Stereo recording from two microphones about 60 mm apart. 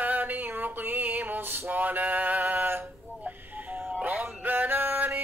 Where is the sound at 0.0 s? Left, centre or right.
Right.